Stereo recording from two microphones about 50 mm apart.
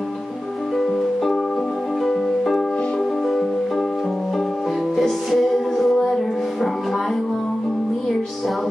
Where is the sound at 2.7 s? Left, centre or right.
Centre.